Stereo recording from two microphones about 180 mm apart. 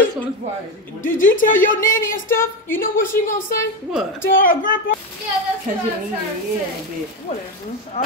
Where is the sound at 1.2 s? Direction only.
50° left (ahead or behind).